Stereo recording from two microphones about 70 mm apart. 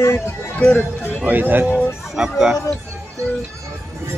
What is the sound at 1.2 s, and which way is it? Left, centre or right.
Speech, right.